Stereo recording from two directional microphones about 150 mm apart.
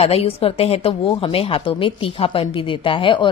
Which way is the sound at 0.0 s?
40° left (ahead or behind).